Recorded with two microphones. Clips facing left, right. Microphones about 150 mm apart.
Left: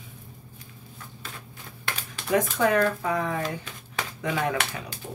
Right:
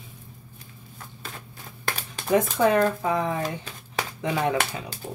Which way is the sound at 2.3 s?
25° right (ahead or behind).